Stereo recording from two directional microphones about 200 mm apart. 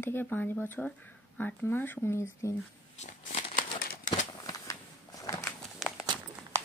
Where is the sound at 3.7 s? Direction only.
40° left (ahead or behind).